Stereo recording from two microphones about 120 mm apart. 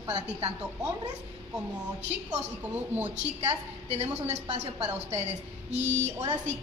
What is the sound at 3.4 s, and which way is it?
A woman's voice, 65° right (ahead or behind).